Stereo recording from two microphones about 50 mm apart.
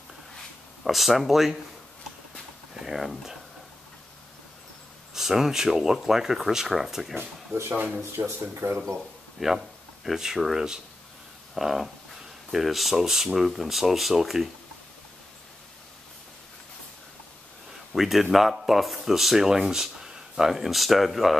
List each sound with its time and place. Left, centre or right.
0.8 s speech: centre
2.7 s speech: centre
5.1 s speech: centre
8.3 s speech: right
9.4 s speech: centre
17.9 s speech: centre